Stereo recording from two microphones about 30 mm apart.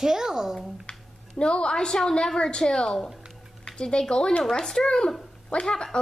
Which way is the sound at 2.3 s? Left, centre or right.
Left.